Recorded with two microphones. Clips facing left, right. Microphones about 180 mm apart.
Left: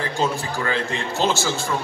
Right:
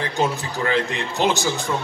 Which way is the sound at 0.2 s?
20° right (ahead or behind).